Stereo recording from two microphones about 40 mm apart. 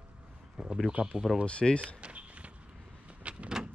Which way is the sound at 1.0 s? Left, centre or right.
Right.